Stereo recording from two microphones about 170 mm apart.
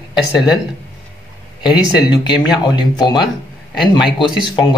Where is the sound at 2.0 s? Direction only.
25° left (ahead or behind).